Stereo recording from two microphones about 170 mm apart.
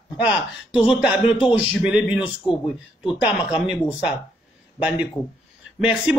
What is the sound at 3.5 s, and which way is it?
Speech, 5° right (ahead or behind).